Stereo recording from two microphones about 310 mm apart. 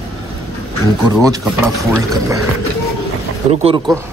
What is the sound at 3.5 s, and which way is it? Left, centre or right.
Speech, centre.